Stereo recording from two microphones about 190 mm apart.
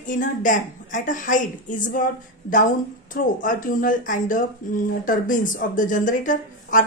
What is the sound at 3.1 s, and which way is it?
Speech, 45° left (ahead or behind).